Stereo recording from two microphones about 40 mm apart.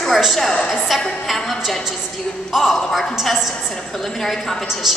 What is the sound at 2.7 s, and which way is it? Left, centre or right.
A man's voice, centre.